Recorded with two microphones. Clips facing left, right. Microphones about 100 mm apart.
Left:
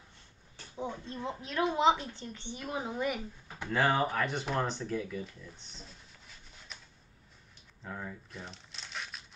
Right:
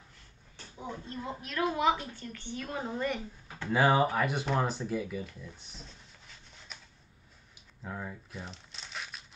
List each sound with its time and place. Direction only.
0.7 s a woman's voice: 20° left (ahead or behind)
3.6 s speech: 10° right (ahead or behind)
7.8 s crumpling: 5° right (ahead or behind)